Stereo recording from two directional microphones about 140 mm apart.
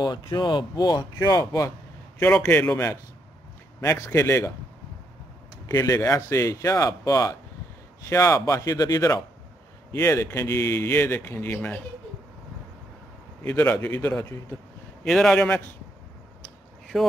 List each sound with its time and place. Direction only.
0.0 s speech: 30° left (ahead or behind)
2.1 s speech: 10° left (ahead or behind)
5.7 s speech: 25° left (ahead or behind)
13.4 s speech: 10° left (ahead or behind)
15.0 s speech: 5° left (ahead or behind)
16.9 s speech: centre (ahead or behind)